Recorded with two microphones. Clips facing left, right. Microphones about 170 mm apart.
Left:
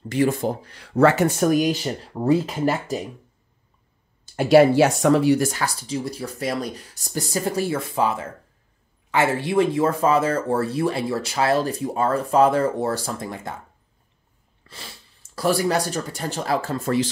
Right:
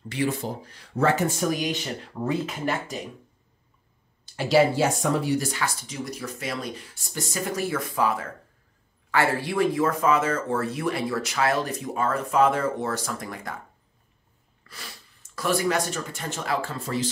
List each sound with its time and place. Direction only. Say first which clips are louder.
0.1 s speech: left 6 dB; 45° left (ahead or behind)
0.7 s speech: left 6 dB; 80° left
1.5 s speech: left 7 dB; 45° left (ahead or behind)
2.1 s speech: left 8 dB; 35° left (ahead or behind)
4.4 s speech: left 6 dB; 60° left (ahead or behind); by 5.3 s 85° left
5.4 s speech: left 5 dB; 45° left (ahead or behind)
5.9 s speech: left 5 dB; 30° left (ahead or behind)
15.3 s speech: left 3 dB; 35° left (ahead or behind)